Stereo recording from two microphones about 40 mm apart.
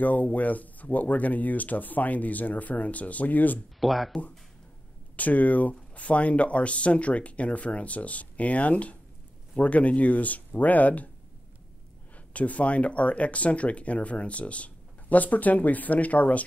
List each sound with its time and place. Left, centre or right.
0.0 s speech: left
3.8 s speech: centre
5.1 s speech: left
12.3 s speech: left